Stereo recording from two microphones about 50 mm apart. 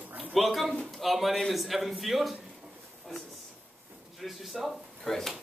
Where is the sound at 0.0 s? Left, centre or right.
Right.